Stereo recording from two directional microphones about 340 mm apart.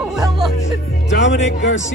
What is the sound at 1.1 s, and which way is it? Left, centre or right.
Music, left.